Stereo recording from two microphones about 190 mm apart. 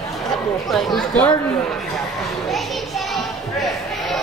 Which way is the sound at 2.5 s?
Centre (ahead or behind).